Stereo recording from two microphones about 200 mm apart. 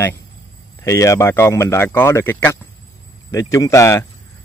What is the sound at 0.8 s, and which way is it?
A man's voice, 15° left (ahead or behind).